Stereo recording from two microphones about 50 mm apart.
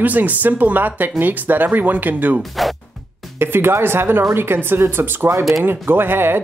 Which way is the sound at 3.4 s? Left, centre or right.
Right.